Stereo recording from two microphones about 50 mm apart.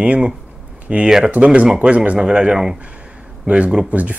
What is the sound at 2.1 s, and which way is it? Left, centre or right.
Speech, centre.